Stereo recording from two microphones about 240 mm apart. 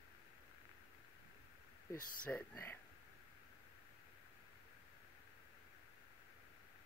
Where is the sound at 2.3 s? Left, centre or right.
Centre.